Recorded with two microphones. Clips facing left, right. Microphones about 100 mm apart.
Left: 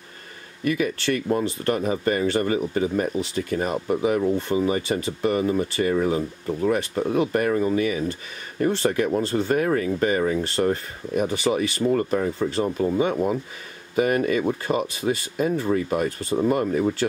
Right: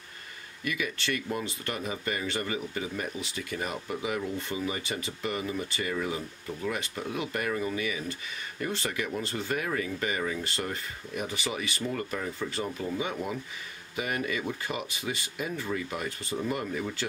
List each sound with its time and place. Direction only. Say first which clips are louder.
0.7 s speech: left 9 dB; 35° left (ahead or behind)